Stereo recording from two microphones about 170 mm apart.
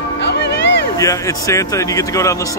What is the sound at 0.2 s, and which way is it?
Music, 90° left.